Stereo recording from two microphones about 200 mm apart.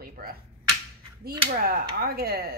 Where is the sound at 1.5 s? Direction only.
45° right (ahead or behind).